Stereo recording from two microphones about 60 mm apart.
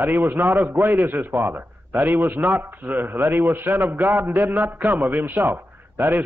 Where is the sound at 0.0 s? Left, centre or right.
Right.